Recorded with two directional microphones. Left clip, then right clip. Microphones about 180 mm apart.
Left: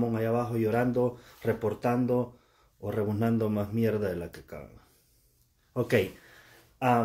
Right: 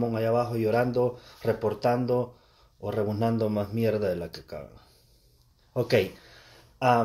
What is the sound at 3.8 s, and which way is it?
Speech, 40° left (ahead or behind).